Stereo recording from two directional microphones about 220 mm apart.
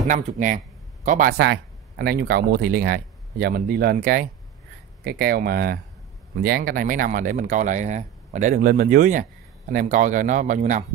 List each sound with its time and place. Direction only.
0.1 s speech: 35° right (ahead or behind)
1.4 s speech: 50° right (ahead or behind)